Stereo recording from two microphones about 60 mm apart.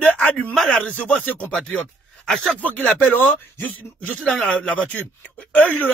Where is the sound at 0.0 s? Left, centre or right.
Left.